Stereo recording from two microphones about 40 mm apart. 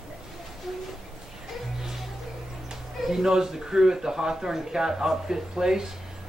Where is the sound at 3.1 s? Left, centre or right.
Centre.